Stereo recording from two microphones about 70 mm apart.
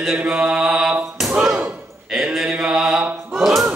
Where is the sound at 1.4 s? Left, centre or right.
Centre.